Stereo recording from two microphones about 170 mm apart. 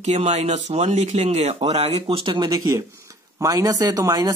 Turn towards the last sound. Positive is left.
turn(degrees=-20)  # may be behind; listen again after turning